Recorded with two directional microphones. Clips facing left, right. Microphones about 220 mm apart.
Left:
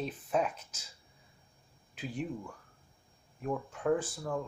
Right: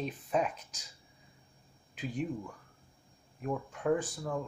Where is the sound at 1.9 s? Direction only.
Centre (ahead or behind).